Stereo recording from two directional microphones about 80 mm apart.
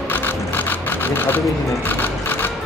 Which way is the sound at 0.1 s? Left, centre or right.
Left.